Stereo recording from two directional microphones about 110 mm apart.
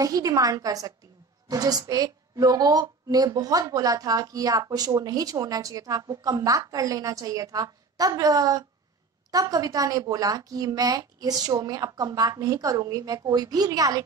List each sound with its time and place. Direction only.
0.0 s a woman's voice: 35° right (ahead or behind)